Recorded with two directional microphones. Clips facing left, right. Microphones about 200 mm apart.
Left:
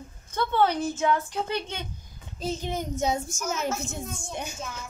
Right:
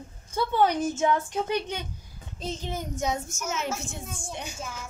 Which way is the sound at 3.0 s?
30° left (ahead or behind).